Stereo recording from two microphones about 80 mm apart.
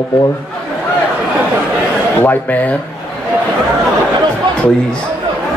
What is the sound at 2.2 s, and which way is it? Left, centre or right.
Speech, left.